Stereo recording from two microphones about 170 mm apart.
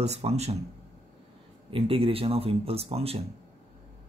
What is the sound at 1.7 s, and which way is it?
Speech, 35° right (ahead or behind).